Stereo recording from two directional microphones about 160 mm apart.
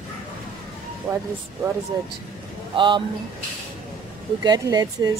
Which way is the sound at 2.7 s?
30° right (ahead or behind).